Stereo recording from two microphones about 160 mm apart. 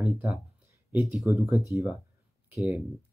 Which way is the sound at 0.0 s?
20° right (ahead or behind).